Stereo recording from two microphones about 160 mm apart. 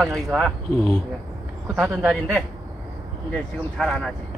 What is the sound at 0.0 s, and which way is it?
Speech, centre (ahead or behind).